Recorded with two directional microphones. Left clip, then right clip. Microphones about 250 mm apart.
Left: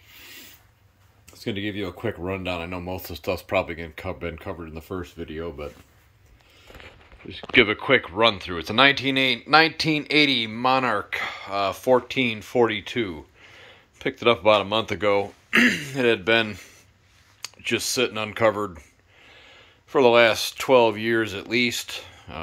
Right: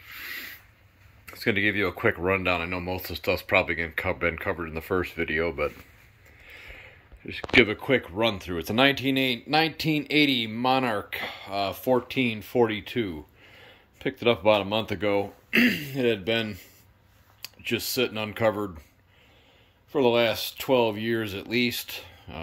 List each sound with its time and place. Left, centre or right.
0.0 s a sound: centre
1.2 s speech: centre
4.9 s speech: right
7.2 s speech: centre
19.9 s speech: centre